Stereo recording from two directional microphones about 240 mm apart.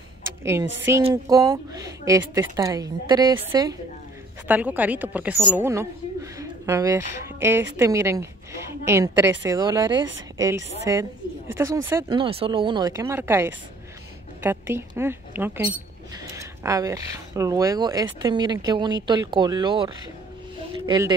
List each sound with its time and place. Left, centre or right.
0.4 s a woman's voice: centre